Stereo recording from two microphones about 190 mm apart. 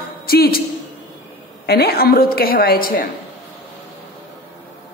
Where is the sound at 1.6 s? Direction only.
55° left (ahead or behind).